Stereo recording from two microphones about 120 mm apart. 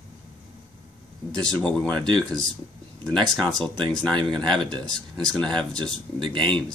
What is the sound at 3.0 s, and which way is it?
Speech, 5° left (ahead or behind).